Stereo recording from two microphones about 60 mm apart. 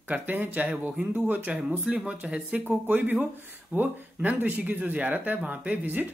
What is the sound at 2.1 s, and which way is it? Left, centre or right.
Speech, centre.